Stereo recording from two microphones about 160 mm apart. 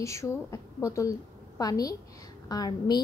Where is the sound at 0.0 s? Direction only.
20° left (ahead or behind).